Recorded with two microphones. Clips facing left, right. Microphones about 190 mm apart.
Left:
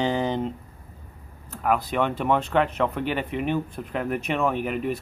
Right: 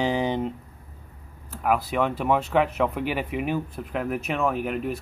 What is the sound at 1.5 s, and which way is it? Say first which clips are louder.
Speech: even; 5° right (ahead or behind).